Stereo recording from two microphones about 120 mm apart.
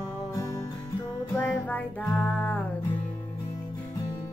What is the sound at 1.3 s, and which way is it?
Music, 15° left (ahead or behind).